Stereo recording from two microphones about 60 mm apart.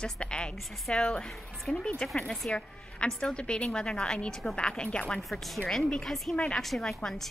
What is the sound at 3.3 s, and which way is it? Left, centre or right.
A woman's voice, centre.